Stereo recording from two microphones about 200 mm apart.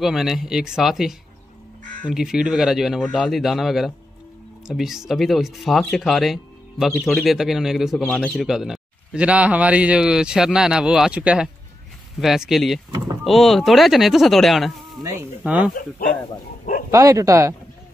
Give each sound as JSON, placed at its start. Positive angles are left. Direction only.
{"t": 0.0, "sound": "a man's voice", "side_deg": 0}
{"t": 15.0, "sound": "speech", "side_deg": -10}
{"t": 16.9, "sound": "speech", "side_deg": -15}